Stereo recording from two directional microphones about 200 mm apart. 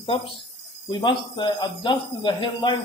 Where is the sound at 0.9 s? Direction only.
25° left (ahead or behind).